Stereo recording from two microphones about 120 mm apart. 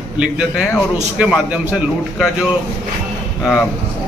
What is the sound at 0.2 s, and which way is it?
A man's voice, 10° right (ahead or behind).